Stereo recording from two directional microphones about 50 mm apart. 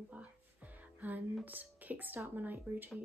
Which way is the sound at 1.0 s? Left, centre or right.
Right.